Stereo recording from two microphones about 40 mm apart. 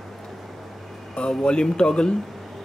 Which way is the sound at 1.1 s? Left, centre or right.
Left.